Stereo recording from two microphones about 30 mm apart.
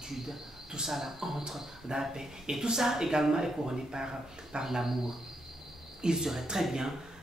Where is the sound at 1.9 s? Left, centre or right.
Right.